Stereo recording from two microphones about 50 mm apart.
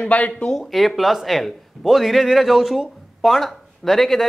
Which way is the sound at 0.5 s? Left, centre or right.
Centre.